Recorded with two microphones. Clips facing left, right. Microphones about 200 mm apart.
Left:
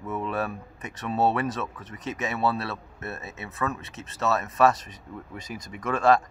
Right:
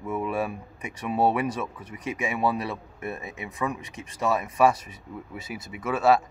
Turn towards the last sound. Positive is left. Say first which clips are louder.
# even
turn(degrees=-10)  # may be behind; listen again after turning